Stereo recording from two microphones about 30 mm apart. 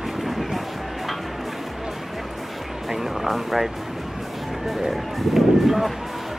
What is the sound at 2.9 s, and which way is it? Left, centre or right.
Music, centre.